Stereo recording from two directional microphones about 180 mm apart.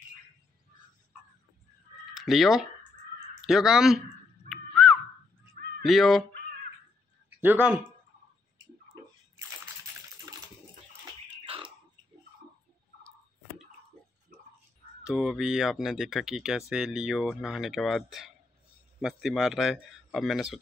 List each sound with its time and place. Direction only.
2.1 s speech: centre (ahead or behind)
4.5 s a sound: centre (ahead or behind)
5.9 s speech: centre (ahead or behind)
7.3 s speech: 10° right (ahead or behind)
11.4 s a sound: 30° right (ahead or behind)
15.0 s speech: 5° right (ahead or behind)